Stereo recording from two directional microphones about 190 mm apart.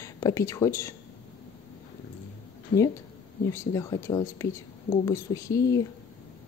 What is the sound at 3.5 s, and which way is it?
Speech, 15° left (ahead or behind).